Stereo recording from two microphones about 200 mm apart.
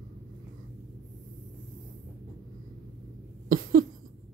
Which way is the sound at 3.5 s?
45° right (ahead or behind).